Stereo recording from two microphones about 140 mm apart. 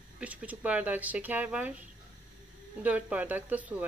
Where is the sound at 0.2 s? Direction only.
10° right (ahead or behind).